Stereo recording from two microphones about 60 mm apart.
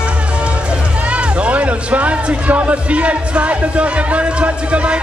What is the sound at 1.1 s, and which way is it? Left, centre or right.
A man's voice, right.